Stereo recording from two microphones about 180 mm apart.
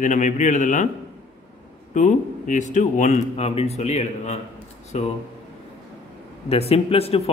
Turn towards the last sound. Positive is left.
turn(degrees=35)  # may be behind; listen again after turning